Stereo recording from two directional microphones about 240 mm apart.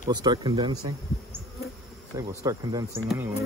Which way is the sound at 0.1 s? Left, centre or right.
Centre.